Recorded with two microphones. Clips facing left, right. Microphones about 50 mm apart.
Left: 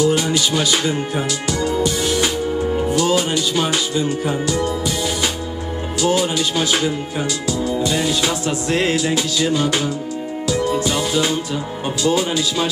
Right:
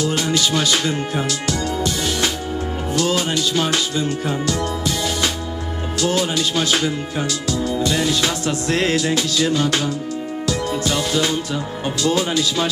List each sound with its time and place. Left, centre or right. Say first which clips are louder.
0.0 s music: left 3 dB; centre
2.9 s speech: right 1 dB; centre
10.5 s music: left 3 dB; centre
12.0 s speech: left 1 dB; centre